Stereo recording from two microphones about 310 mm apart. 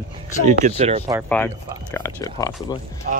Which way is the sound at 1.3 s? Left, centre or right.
Centre.